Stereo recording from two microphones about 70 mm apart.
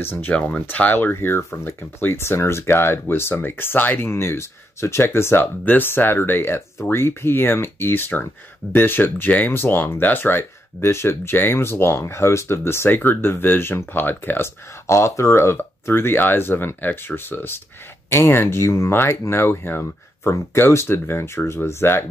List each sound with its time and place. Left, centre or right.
0.0 s speech: left
0.3 s speech: centre
14.9 s speech: left